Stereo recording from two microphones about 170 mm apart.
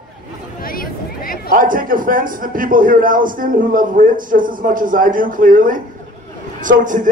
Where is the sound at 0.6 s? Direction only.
60° left (ahead or behind).